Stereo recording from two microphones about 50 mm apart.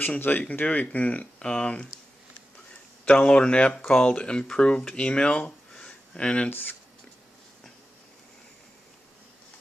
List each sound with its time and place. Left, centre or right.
0.3 s speech: left
1.4 s speech: centre
3.1 s speech: left
5.9 s a sound: left
6.5 s speech: left